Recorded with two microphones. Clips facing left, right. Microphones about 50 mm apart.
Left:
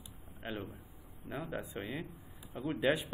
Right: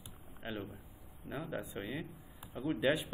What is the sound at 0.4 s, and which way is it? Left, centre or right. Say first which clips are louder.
A man's voice: left 1 dB; centre.